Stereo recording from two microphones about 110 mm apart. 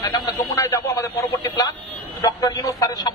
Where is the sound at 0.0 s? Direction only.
35° left (ahead or behind).